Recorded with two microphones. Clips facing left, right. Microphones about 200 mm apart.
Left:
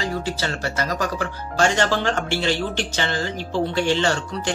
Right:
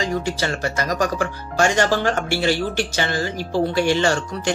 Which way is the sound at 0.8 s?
45° right (ahead or behind).